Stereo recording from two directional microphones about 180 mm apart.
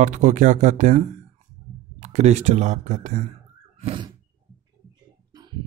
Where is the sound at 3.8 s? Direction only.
30° right (ahead or behind).